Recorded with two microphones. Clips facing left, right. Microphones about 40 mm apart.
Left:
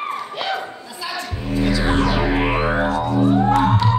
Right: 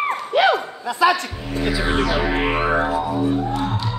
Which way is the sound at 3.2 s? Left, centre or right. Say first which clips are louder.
Left 5 dB; left.